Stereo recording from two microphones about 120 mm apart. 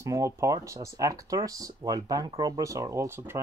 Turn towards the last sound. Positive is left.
turn(degrees=-20)  # may be behind; listen again after turning